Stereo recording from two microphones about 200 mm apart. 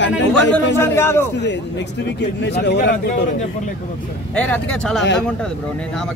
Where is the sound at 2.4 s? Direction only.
55° left (ahead or behind).